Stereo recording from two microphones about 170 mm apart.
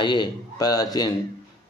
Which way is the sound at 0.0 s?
25° left (ahead or behind).